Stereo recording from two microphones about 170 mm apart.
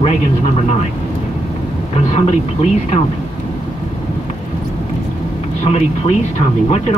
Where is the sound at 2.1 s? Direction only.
40° left (ahead or behind).